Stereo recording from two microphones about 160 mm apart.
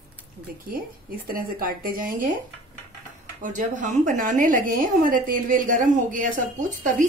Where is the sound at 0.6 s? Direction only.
65° right (ahead or behind).